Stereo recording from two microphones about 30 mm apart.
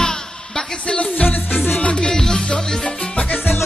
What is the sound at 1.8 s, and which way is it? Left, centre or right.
Music, left.